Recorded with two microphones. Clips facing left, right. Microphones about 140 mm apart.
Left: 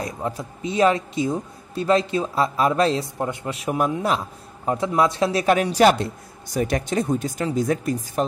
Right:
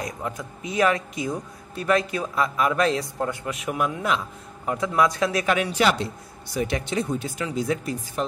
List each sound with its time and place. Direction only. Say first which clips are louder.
0.0 s a man's voice: left 3 dB; 30° left (ahead or behind)